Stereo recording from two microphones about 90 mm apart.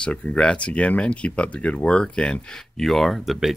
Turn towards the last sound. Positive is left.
turn(degrees=0)  # may be behind; listen again after turning